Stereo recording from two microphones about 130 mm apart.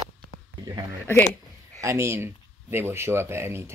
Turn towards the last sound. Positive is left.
turn(degrees=-20)  # may be behind; listen again after turning